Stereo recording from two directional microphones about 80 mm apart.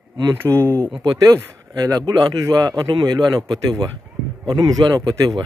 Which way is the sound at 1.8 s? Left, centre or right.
Right.